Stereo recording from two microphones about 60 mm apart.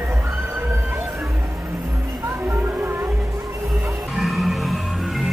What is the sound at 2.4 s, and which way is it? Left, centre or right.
Music, right.